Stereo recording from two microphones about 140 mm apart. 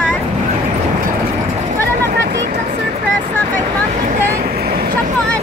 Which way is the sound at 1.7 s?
90° right.